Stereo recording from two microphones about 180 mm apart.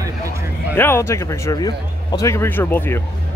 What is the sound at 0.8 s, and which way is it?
A man's voice, 15° left (ahead or behind).